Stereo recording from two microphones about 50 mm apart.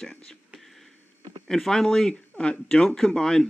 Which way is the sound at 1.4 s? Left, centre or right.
Centre.